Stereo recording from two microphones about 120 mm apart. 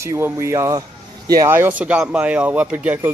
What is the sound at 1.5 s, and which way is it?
Speech, 15° right (ahead or behind).